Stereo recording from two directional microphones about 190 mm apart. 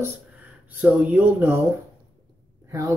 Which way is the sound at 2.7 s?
20° right (ahead or behind).